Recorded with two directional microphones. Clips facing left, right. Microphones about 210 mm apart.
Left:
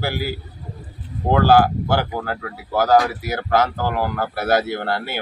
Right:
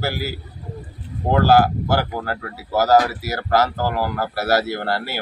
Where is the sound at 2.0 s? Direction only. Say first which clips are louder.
Even; 10° right (ahead or behind).